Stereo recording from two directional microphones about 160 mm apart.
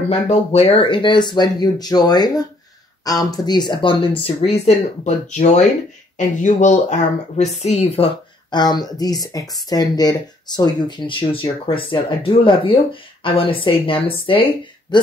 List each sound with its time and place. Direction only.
0.1 s speech: 40° left (ahead or behind)
8.5 s speech: 25° left (ahead or behind)